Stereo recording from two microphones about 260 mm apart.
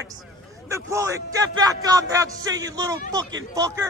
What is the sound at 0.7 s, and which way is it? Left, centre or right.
Speech, centre.